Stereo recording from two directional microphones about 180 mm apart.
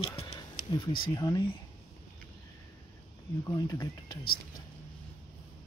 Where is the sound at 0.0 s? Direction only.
30° left (ahead or behind).